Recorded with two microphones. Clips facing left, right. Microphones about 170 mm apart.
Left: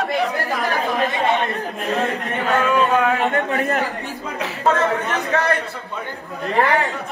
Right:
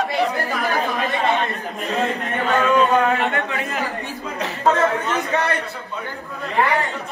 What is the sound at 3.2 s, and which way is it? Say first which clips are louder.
Speech: left 3 dB; 40° left (ahead or behind).